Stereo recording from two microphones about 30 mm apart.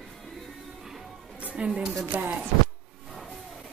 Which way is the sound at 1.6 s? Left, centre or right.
Right.